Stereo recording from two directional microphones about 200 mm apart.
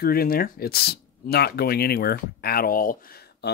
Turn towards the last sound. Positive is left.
turn(degrees=45)  # may be behind; listen again after turning